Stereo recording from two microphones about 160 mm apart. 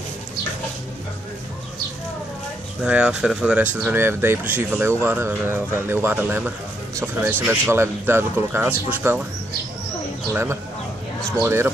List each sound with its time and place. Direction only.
2.8 s speech: 5° right (ahead or behind)
10.3 s speech: 15° right (ahead or behind)